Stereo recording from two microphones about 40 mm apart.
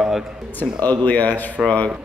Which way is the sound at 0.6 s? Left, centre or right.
Left.